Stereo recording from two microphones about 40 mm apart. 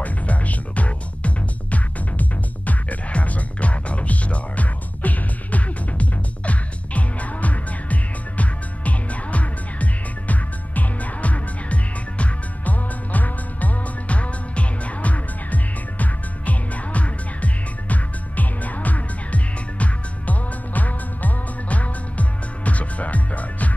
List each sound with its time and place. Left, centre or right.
0.0 s music: left